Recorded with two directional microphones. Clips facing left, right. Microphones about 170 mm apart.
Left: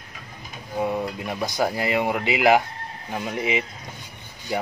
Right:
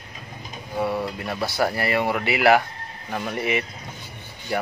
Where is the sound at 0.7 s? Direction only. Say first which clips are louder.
Even; 15° left (ahead or behind).